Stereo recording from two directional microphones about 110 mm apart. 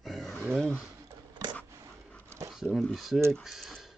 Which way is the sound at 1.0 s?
35° right (ahead or behind).